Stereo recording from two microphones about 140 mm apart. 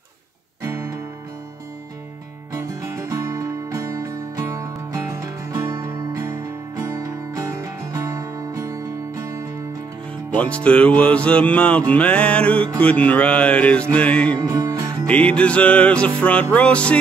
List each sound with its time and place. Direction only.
0.7 s music: 20° right (ahead or behind)
2.5 s music: 20° right (ahead or behind)
10.3 s music: 10° left (ahead or behind)
14.4 s music: 25° right (ahead or behind)
15.0 s music: 10° left (ahead or behind)